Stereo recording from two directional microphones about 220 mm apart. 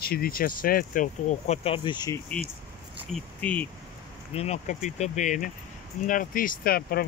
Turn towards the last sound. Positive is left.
turn(degrees=45)  # may be behind; listen again after turning